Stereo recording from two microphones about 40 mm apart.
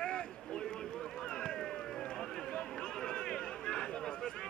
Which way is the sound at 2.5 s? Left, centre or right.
Centre.